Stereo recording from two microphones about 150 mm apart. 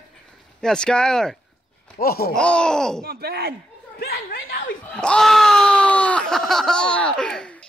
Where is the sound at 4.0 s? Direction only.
85° left.